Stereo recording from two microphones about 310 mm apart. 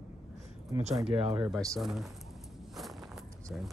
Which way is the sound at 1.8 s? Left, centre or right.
Centre.